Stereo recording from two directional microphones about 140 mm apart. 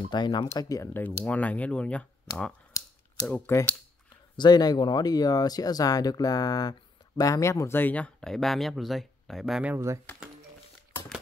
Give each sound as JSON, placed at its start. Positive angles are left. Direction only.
{"t": 0.1, "sound": "speech", "side_deg": 30}
{"t": 1.0, "sound": "speech", "side_deg": 10}
{"t": 2.8, "sound": "a sound", "side_deg": 25}
{"t": 3.3, "sound": "speech", "side_deg": 10}
{"t": 4.4, "sound": "speech", "side_deg": 30}